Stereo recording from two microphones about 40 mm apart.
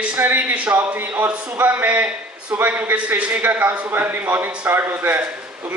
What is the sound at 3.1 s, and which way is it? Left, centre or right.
Speech, right.